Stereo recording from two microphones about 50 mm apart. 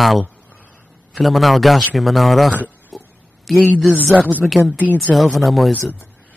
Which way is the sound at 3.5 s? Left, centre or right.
Centre.